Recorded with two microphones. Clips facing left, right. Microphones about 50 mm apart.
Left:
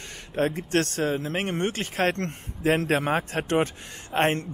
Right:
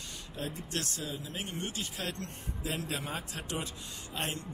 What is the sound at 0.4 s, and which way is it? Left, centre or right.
Speech, left.